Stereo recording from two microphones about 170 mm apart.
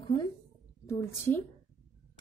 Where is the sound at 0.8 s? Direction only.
15° left (ahead or behind).